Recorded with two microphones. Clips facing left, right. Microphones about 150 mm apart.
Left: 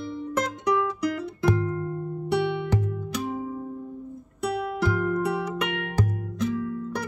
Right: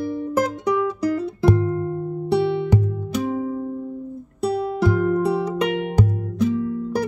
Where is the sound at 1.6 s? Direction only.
20° right (ahead or behind).